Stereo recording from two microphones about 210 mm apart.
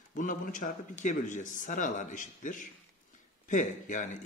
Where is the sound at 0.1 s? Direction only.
40° left (ahead or behind).